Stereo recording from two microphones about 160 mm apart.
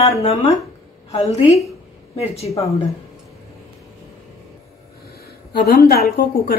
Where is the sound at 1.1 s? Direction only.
40° left (ahead or behind).